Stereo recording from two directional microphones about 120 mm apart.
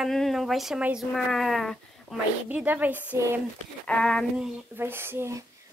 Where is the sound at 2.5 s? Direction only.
15° right (ahead or behind).